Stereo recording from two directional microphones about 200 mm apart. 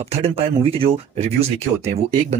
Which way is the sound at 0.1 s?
30° right (ahead or behind).